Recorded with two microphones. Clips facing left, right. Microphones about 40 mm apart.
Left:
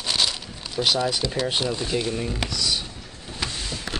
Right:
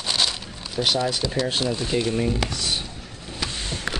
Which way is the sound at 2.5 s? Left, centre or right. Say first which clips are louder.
Left 1 dB; right.